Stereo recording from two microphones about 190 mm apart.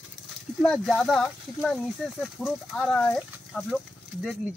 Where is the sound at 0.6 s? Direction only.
Centre (ahead or behind).